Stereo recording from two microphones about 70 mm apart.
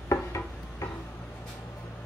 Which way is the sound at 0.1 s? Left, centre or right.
Left.